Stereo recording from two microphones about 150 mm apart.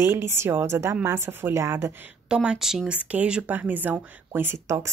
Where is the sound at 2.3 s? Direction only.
5° right (ahead or behind).